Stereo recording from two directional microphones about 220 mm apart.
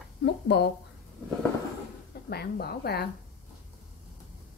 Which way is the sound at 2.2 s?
45° left (ahead or behind).